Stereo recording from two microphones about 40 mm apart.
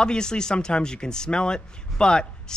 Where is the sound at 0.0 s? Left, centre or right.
Centre.